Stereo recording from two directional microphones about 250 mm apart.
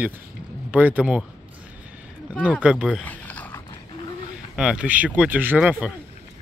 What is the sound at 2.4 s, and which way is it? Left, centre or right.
Speech, centre.